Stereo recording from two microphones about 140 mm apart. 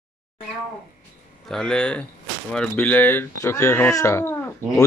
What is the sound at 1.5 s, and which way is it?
Speech, 5° left (ahead or behind).